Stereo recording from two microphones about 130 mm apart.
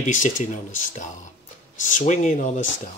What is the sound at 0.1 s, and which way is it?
Speech, 80° left.